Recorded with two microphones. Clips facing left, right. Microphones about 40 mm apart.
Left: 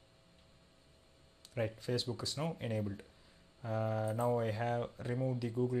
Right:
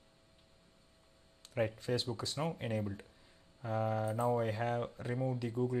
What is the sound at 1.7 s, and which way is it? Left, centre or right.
Speech, centre.